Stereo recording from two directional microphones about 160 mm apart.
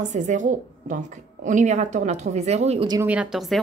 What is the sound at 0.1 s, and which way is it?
A woman's voice, 50° right (ahead or behind).